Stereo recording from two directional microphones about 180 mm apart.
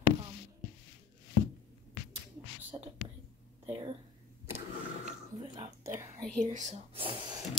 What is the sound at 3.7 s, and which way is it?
Speech, 30° right (ahead or behind).